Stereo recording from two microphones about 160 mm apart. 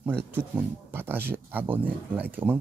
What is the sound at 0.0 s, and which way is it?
Speech, 10° right (ahead or behind).